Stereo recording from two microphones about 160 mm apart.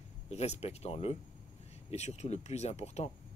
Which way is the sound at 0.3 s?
40° left (ahead or behind).